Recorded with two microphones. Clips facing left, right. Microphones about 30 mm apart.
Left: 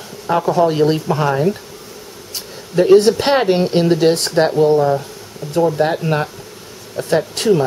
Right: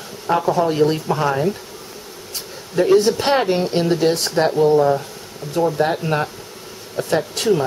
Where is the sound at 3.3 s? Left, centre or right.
Centre.